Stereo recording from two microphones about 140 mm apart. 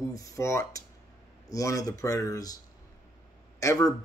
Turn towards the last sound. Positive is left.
turn(degrees=25)  # may be behind; listen again after turning